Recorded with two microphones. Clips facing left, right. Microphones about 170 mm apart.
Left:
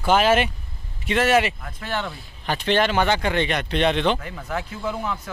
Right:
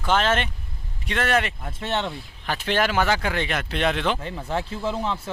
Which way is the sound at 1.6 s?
25° right (ahead or behind).